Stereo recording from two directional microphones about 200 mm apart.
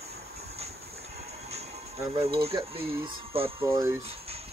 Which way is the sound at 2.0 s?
25° right (ahead or behind).